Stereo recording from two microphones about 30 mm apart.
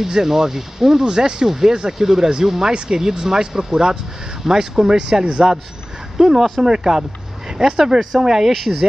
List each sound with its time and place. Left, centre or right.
0.0 s speech: centre
6.1 s speech: centre
6.6 s speech: centre